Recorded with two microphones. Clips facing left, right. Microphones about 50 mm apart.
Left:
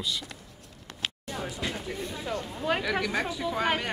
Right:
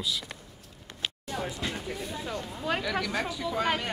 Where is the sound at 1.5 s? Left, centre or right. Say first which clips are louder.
Left 1 dB; centre.